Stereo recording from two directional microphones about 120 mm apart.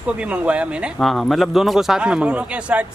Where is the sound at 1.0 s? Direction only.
Centre (ahead or behind).